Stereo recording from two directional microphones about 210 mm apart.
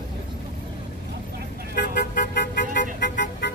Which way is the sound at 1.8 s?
50° left (ahead or behind).